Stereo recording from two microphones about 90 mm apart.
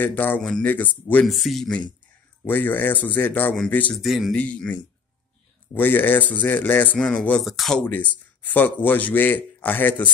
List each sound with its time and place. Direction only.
0.0 s speech: 20° left (ahead or behind)
1.2 s speech: centre (ahead or behind)
2.4 s speech: 20° left (ahead or behind)
3.9 s speech: centre (ahead or behind)
4.3 s speech: 10° left (ahead or behind)
7.4 s speech: centre (ahead or behind)
7.8 s speech: 20° left (ahead or behind)